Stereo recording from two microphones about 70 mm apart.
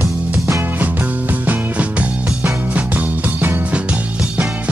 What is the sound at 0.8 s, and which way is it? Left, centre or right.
Music, right.